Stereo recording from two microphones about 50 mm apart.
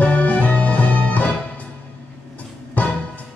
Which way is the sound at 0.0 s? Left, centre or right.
Left.